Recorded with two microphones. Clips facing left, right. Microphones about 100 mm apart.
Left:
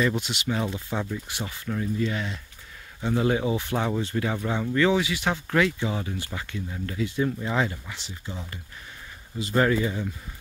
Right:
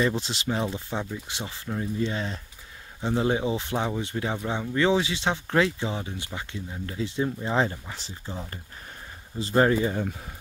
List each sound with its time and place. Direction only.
0.0 s speech: 30° right (ahead or behind)
0.9 s speech: 20° right (ahead or behind)
9.4 s speech: 30° right (ahead or behind)